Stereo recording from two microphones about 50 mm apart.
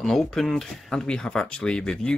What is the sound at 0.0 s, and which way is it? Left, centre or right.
Speech, centre.